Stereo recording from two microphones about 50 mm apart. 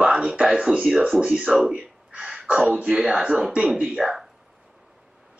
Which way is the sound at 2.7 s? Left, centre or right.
Centre.